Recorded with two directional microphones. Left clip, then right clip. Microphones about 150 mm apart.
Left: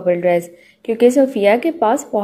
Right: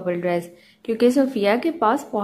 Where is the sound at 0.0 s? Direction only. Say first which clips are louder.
Left 8 dB; 10° left (ahead or behind).